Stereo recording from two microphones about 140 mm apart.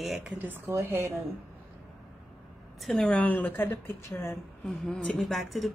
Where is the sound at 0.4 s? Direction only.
15° right (ahead or behind).